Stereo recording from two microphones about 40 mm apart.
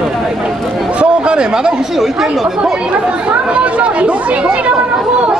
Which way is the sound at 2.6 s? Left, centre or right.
Right.